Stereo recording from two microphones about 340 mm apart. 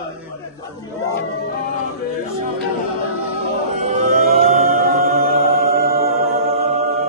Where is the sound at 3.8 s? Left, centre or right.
Right.